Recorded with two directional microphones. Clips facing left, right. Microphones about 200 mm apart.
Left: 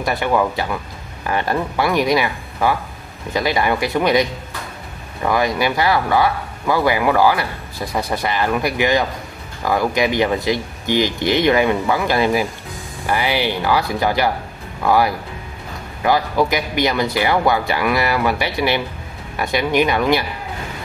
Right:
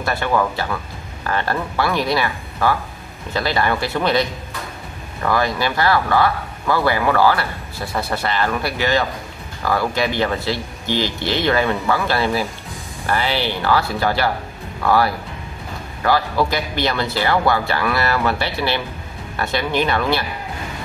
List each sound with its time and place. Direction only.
0.0 s speech: 15° left (ahead or behind)